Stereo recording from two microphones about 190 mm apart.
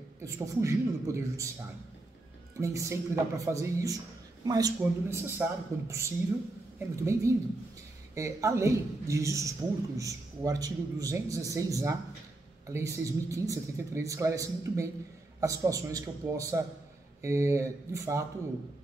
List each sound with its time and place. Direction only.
0.2 s speech: 15° right (ahead or behind)
2.6 s speech: 15° right (ahead or behind)